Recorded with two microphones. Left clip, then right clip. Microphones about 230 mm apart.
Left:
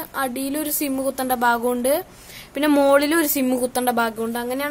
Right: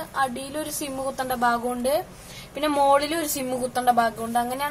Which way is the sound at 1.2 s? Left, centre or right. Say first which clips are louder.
Left 3 dB; left.